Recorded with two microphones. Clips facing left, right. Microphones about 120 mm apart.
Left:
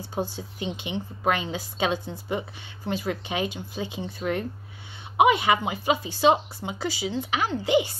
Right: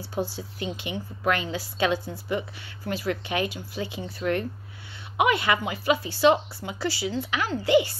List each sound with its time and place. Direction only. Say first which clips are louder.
0.0 s a woman's voice: even; 20° left (ahead or behind)
5.1 s a woman's voice: left 3 dB; 20° left (ahead or behind)